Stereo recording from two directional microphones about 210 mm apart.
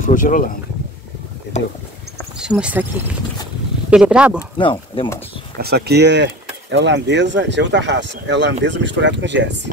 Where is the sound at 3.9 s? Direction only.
5° right (ahead or behind).